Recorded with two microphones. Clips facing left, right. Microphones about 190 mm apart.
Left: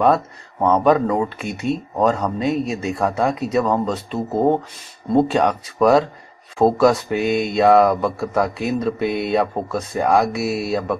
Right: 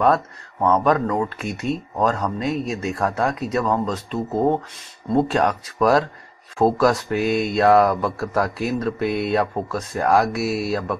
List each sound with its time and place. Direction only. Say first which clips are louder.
0.6 s speech: left 3 dB; 10° left (ahead or behind)
5.3 s speech: left 2 dB; centre (ahead or behind)